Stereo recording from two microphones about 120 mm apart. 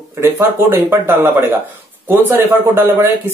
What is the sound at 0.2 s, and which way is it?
Speech, 20° right (ahead or behind).